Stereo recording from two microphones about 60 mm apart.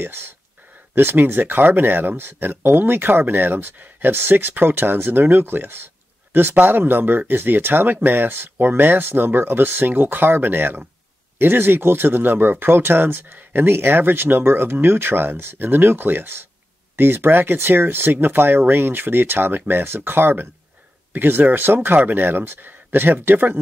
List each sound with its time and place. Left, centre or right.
0.0 s speech: right